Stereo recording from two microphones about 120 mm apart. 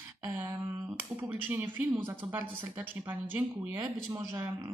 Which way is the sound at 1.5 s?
15° right (ahead or behind).